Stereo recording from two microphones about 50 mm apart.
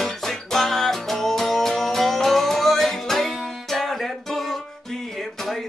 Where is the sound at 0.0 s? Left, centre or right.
Centre.